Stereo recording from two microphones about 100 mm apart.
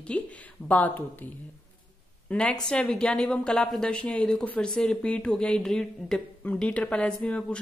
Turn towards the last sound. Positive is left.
turn(degrees=10)  # may be behind; listen again after turning